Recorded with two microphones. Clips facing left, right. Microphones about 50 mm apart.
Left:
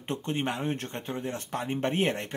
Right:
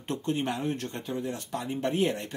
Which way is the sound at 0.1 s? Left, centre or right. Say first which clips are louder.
Right 1 dB; left.